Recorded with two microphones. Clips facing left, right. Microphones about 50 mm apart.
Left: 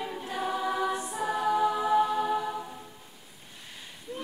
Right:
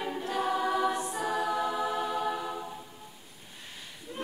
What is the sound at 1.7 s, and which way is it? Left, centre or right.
A capella, centre.